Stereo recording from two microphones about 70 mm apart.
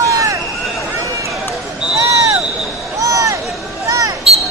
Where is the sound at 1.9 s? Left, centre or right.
Right.